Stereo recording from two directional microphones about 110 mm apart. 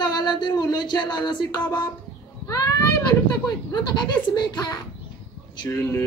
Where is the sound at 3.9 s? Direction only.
40° left (ahead or behind).